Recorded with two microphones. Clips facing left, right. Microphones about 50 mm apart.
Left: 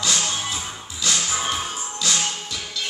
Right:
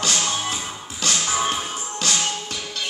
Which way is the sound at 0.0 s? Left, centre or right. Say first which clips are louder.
Right 1 dB; right.